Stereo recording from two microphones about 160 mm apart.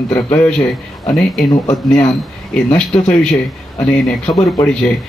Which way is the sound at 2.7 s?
5° left (ahead or behind).